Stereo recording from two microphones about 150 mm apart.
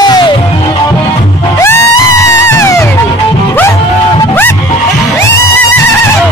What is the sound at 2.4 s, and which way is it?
Music, 20° left (ahead or behind).